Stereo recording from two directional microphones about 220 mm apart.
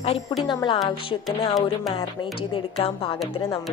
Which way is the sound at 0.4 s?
20° left (ahead or behind).